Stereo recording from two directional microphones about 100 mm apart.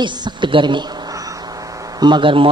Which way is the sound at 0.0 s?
50° right (ahead or behind).